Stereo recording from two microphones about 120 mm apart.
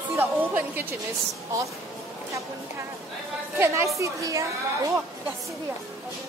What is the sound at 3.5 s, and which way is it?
Speech, 25° right (ahead or behind).